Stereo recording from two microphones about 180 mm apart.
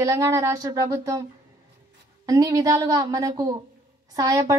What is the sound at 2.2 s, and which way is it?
A woman's voice, 20° right (ahead or behind).